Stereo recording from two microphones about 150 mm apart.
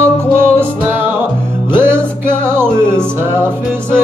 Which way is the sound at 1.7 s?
15° right (ahead or behind).